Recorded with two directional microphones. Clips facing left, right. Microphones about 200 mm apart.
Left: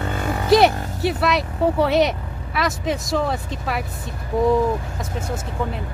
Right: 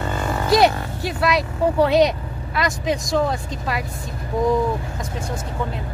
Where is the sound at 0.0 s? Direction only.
55° left (ahead or behind).